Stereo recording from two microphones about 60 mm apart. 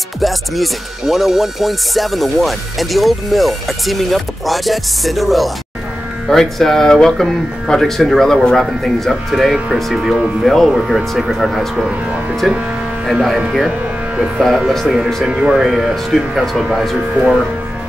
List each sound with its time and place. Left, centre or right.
0.2 s speech: centre
10.4 s speech: centre
10.7 s speech: centre
15.2 s speech: centre
15.6 s speech: centre